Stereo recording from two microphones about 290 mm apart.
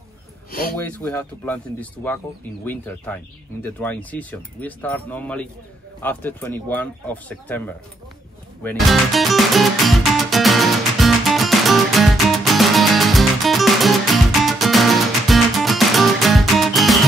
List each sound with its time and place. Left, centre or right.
0.5 s speech: left
0.8 s speech: centre
8.6 s music: centre